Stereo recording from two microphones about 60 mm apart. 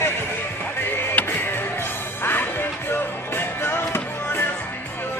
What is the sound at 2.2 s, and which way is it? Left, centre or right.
Music, left.